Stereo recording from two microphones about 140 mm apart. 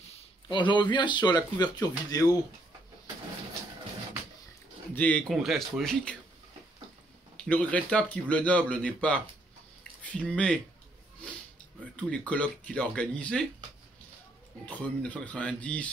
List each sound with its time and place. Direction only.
0.5 s speech: 35° left (ahead or behind)
4.9 s speech: 10° left (ahead or behind)
5.3 s speech: centre (ahead or behind)
7.3 s speech: 10° left (ahead or behind)
11.8 s speech: 10° left (ahead or behind)
14.7 s speech: 10° left (ahead or behind)